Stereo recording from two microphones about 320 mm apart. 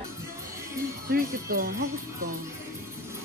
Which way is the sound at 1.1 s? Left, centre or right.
Right.